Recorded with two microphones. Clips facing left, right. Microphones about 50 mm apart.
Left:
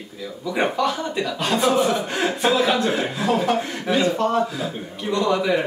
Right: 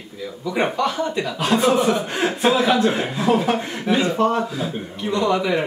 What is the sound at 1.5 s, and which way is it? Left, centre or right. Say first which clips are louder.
Speech: right 2 dB; centre.